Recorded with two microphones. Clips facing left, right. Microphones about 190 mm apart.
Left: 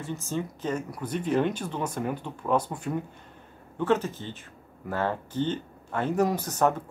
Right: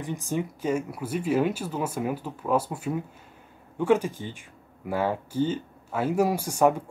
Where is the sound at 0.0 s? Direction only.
15° right (ahead or behind).